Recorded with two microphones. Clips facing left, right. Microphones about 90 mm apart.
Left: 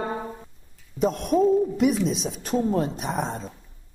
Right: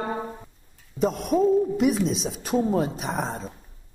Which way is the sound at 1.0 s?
Centre (ahead or behind).